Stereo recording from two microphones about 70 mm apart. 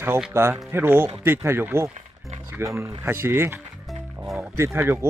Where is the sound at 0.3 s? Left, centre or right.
Right.